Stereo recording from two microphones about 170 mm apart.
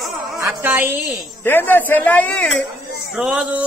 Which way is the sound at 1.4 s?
10° left (ahead or behind).